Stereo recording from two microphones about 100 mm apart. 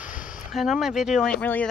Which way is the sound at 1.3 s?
15° left (ahead or behind).